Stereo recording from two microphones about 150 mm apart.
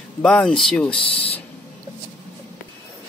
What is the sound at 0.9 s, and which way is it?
Speech, 35° left (ahead or behind).